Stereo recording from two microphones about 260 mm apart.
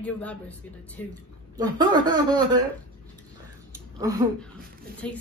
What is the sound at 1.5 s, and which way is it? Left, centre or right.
Speech, centre.